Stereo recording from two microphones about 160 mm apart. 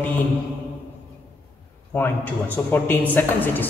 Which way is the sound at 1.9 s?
10° left (ahead or behind).